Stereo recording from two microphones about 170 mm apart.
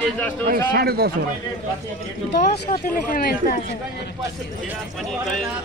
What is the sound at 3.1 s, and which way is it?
Speech, 60° left (ahead or behind).